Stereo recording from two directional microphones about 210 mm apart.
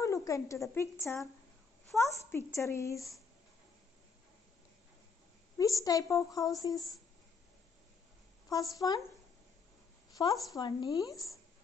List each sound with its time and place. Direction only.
0.0 s a sound: 15° left (ahead or behind)
0.7 s a woman's voice: 15° left (ahead or behind)
5.6 s a woman's voice: 15° left (ahead or behind)
8.7 s a woman's voice: 15° left (ahead or behind)
10.1 s a woman's voice: 15° left (ahead or behind)